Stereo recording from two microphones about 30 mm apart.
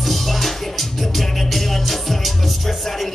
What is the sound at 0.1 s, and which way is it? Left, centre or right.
Music, centre.